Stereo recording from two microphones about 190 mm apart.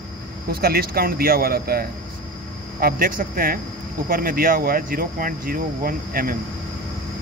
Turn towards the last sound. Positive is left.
turn(degrees=-50)  # may be behind; listen again after turning